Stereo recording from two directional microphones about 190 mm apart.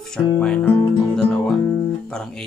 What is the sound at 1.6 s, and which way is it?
Guitar, 15° left (ahead or behind).